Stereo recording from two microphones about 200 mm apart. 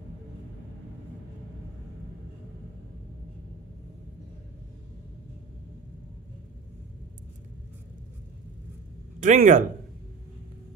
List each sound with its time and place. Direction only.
9.2 s speech: 40° right (ahead or behind)